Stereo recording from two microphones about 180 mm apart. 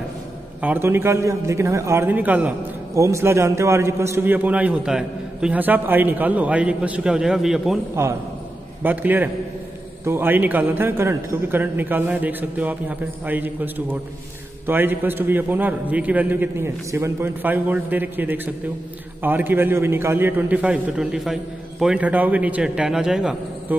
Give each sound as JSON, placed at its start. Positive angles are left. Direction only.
{"t": 0.6, "sound": "a man's voice", "side_deg": -10}
{"t": 8.8, "sound": "a man's voice", "side_deg": -10}